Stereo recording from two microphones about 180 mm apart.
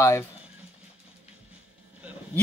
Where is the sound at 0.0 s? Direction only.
15° left (ahead or behind).